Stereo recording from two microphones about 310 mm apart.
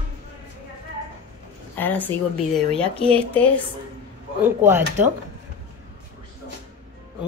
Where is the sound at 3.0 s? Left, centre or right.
Centre.